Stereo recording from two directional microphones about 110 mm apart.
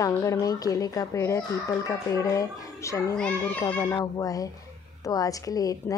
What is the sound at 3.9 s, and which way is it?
Speech, 30° left (ahead or behind).